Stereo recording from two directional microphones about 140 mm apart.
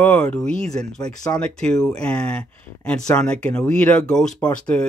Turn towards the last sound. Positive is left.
turn(degrees=5)  # may be behind; listen again after turning